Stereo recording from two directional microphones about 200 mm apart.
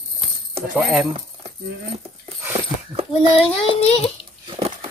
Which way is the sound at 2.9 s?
30° right (ahead or behind).